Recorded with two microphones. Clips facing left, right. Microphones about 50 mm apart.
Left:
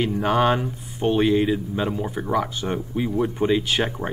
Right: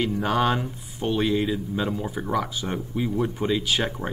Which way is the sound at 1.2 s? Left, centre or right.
Centre.